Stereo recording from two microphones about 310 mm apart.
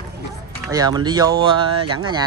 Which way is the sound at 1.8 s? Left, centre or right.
Right.